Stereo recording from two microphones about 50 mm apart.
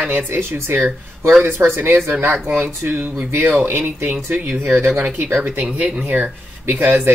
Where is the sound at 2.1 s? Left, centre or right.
Right.